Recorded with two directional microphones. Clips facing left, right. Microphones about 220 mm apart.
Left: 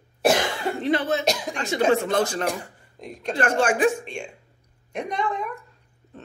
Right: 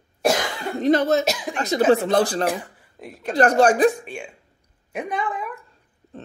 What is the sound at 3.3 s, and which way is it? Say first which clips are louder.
Speech: right 6 dB; 40° right (ahead or behind).